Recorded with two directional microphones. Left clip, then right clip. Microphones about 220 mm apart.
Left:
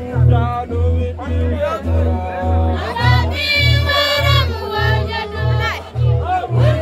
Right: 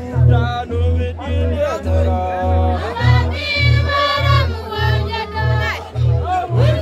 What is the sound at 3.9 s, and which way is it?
Music, 50° left (ahead or behind).